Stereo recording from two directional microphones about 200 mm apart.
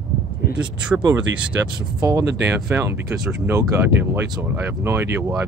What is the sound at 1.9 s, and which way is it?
Speech, 15° right (ahead or behind).